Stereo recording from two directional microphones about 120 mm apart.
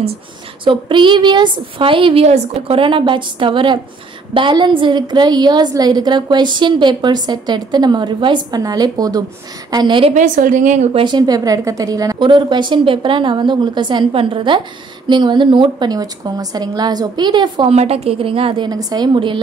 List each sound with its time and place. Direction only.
0.7 s a woman's voice: 45° right (ahead or behind)
2.2 s a woman's voice: 65° right (ahead or behind)
2.8 s a woman's voice: 45° right (ahead or behind)
10.1 s a woman's voice: 90° right
11.0 s a woman's voice: 40° right (ahead or behind)
17.6 s a woman's voice: 55° right (ahead or behind)
18.7 s a woman's voice: 35° right (ahead or behind)